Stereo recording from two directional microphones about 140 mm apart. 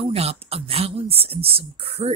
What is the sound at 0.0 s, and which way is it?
Speech, 45° right (ahead or behind).